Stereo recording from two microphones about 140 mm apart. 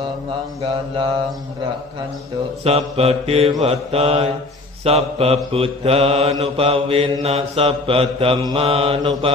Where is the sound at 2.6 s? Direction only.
45° right (ahead or behind).